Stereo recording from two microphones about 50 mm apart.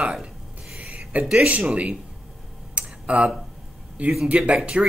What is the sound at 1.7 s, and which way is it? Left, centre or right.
Speech, right.